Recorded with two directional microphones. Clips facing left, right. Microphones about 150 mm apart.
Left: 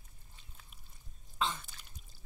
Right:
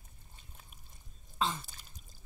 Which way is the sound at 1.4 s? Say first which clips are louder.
Right 2 dB; 35° right (ahead or behind).